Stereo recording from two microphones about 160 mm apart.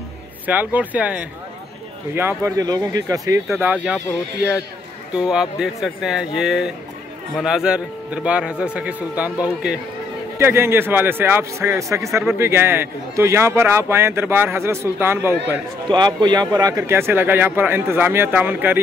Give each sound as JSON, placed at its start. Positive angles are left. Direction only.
{"t": 0.5, "sound": "a man's voice", "side_deg": -10}
{"t": 3.4, "sound": "speech", "side_deg": -5}
{"t": 5.1, "sound": "a man's voice", "side_deg": -5}
{"t": 15.9, "sound": "a man's voice", "side_deg": -25}